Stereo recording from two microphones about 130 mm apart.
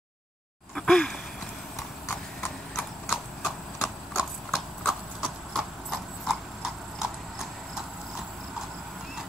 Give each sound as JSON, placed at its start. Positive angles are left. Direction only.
{"t": 0.7, "sound": "a sound", "side_deg": 5}
{"t": 2.0, "sound": "clip-clop", "side_deg": 15}
{"t": 3.1, "sound": "horse", "side_deg": 0}
{"t": 4.2, "sound": "clip-clop", "side_deg": 0}